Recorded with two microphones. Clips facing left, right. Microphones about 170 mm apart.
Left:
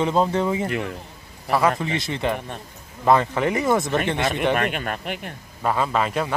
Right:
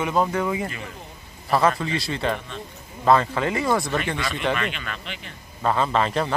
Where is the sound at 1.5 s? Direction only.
15° left (ahead or behind).